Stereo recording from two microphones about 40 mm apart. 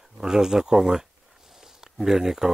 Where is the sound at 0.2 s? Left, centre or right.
Centre.